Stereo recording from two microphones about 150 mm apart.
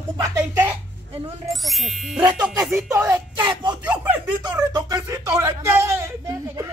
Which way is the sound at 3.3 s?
30° right (ahead or behind).